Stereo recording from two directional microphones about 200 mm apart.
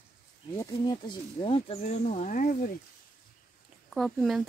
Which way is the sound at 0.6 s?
20° left (ahead or behind).